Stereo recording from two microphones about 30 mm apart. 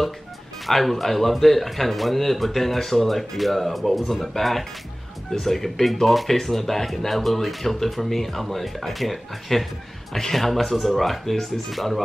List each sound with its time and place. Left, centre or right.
0.7 s speech: centre